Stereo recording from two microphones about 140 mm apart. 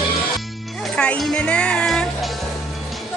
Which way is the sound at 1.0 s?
5° left (ahead or behind).